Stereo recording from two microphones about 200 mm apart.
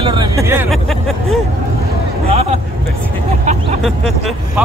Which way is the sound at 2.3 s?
30° right (ahead or behind).